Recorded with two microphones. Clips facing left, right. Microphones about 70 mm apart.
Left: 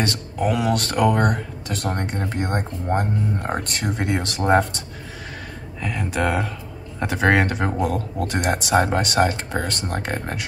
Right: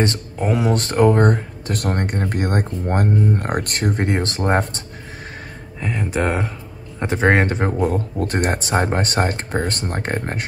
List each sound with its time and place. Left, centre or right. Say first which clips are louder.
0.0 s speech: right 2 dB; right
1.7 s speech: right 4 dB; right
3.9 s speech: right 1 dB; right
5.8 s speech: right 2 dB; right